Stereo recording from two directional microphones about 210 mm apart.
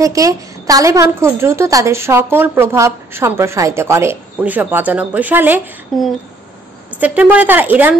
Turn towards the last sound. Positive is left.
turn(degrees=-10)  # may be behind; listen again after turning